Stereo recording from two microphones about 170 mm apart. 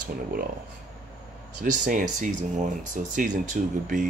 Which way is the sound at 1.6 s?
50° right (ahead or behind).